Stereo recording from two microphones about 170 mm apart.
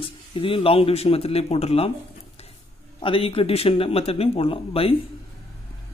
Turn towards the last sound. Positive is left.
turn(degrees=35)  # may be behind; listen again after turning